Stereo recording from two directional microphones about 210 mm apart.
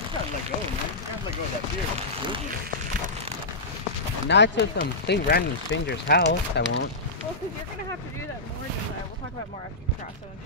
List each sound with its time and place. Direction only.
4.3 s speech: 55° left (ahead or behind)